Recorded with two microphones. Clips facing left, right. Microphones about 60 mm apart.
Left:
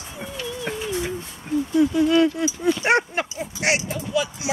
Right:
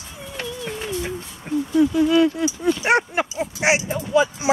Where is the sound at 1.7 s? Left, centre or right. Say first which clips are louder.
Right 1 dB; centre.